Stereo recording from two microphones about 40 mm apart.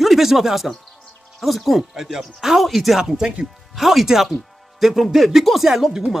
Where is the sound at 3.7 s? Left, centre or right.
Centre.